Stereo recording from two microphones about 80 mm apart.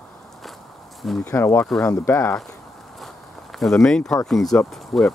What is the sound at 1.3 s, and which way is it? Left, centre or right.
Speech, left.